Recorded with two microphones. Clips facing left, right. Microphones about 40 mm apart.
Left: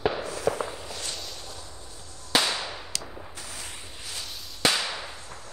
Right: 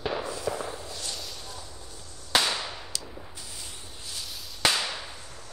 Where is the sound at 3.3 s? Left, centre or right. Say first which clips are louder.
Left 3 dB; left.